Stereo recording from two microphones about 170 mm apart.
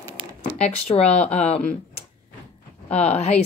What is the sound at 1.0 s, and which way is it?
Speech, 40° left (ahead or behind).